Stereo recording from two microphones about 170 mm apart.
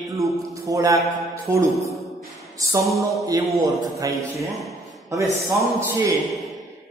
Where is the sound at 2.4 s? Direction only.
20° right (ahead or behind).